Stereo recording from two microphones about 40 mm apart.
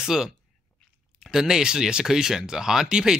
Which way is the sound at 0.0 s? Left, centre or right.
Centre.